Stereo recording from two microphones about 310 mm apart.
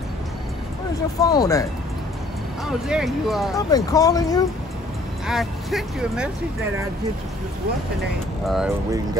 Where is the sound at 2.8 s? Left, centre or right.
Centre.